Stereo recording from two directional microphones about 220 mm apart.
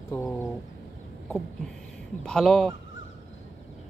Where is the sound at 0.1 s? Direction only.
10° left (ahead or behind).